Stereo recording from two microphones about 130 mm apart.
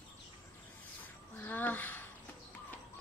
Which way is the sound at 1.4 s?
15° left (ahead or behind).